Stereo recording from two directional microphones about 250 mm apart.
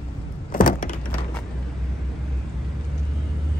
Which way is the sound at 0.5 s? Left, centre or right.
Left.